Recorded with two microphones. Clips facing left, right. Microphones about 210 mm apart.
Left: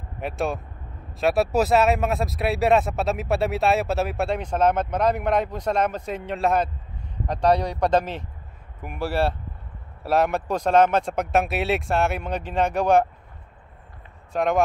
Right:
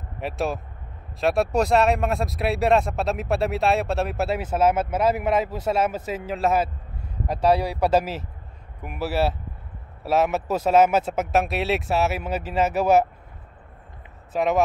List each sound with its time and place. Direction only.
0.2 s speech: centre (ahead or behind)
14.3 s speech: 5° right (ahead or behind)